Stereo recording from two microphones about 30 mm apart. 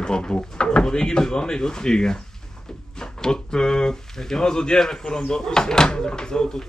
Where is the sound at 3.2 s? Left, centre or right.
Left.